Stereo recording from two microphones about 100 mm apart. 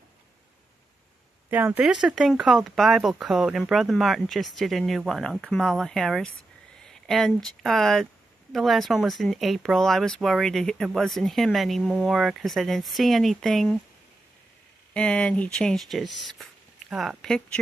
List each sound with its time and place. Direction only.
1.5 s speech: 15° right (ahead or behind)
1.9 s speech: 5° right (ahead or behind)
15.0 s speech: 10° left (ahead or behind)